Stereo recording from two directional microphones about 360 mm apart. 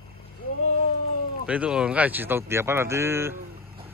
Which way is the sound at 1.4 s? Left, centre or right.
Centre.